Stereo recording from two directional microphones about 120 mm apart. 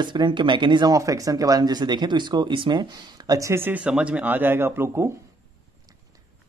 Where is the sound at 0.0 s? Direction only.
40° right (ahead or behind).